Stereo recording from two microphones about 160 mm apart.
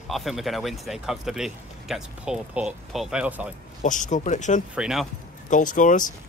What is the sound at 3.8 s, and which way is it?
Speech, 50° left (ahead or behind).